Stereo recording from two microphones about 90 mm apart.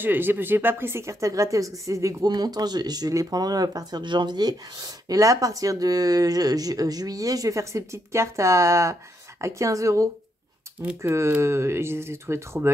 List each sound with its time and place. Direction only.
0.0 s speech: 20° right (ahead or behind)
2.2 s speech: 50° right (ahead or behind); by 12.7 s 30° right (ahead or behind)